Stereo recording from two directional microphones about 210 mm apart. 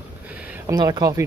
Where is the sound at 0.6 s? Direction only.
20° right (ahead or behind).